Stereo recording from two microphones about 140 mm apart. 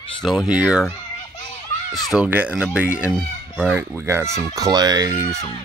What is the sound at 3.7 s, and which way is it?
Speech, 20° right (ahead or behind).